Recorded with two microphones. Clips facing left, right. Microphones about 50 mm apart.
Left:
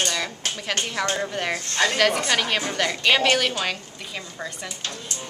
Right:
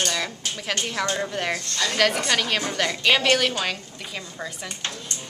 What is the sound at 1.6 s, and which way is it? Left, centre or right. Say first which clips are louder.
Speech: left 4 dB; left.